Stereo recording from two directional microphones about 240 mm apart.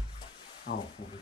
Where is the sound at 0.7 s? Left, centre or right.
Left.